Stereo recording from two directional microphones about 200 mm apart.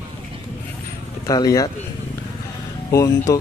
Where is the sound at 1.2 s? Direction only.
15° left (ahead or behind).